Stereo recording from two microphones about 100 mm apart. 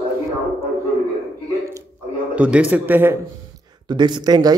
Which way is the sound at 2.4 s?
10° right (ahead or behind).